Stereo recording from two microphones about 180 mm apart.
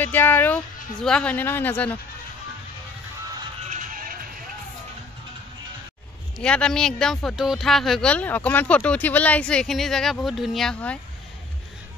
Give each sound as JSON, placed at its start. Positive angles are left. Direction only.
{"t": 0.0, "sound": "speech", "side_deg": 10}
{"t": 3.6, "sound": "music", "side_deg": -45}
{"t": 6.3, "sound": "speech", "side_deg": 5}